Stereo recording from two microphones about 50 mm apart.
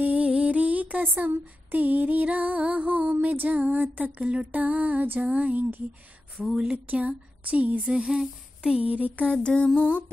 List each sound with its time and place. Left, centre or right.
0.0 s music: right
1.0 s female singing: right
4.2 s a sound: right
4.5 s female singing: right
6.5 s speech: centre
6.9 s a woman's voice: right
7.8 s a sound: centre
8.8 s female singing: right
9.3 s a sound: left